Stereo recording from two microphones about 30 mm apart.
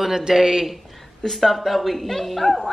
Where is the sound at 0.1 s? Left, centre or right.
Centre.